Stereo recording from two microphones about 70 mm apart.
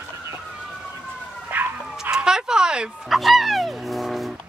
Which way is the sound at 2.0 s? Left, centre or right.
Centre.